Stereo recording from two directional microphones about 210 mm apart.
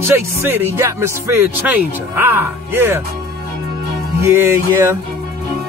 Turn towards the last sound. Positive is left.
turn(degrees=-10)  # may be behind; listen again after turning